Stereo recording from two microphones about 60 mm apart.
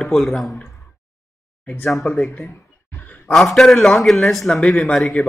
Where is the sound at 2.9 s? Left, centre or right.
Left.